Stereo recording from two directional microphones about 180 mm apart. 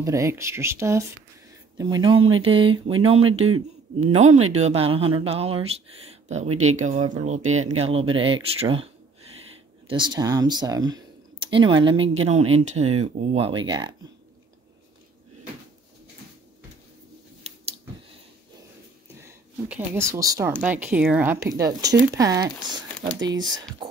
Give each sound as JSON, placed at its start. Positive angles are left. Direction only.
{"t": 0.0, "sound": "speech", "side_deg": -15}
{"t": 17.4, "sound": "scissors", "side_deg": -35}
{"t": 19.7, "sound": "speech", "side_deg": -15}